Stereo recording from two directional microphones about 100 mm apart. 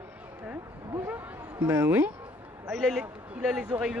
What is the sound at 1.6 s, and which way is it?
Speech, 25° right (ahead or behind).